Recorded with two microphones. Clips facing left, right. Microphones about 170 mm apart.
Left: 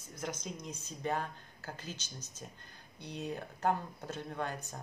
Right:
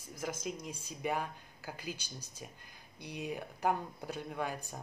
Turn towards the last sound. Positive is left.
turn(degrees=-10)  # may be behind; listen again after turning